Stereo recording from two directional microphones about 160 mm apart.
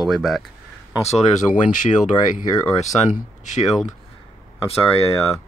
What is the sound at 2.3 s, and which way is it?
Speech, 55° left (ahead or behind).